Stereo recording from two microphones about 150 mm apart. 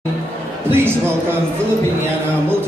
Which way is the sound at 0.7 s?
15° right (ahead or behind).